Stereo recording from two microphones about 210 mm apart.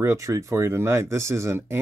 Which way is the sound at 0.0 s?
15° right (ahead or behind).